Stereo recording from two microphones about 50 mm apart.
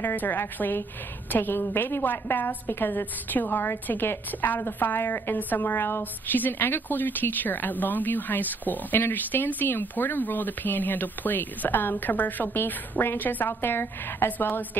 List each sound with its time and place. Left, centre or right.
0.0 s a woman's voice: left